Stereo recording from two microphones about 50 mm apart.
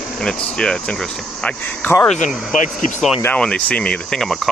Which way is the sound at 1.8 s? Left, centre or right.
Left.